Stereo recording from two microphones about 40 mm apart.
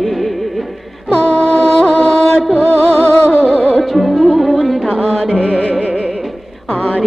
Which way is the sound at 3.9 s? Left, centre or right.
Centre.